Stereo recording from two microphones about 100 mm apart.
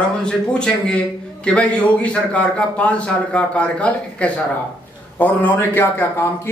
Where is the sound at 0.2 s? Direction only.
10° left (ahead or behind).